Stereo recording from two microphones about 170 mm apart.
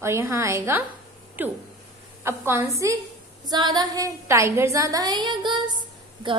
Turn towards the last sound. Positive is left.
turn(degrees=-25)  # may be behind; listen again after turning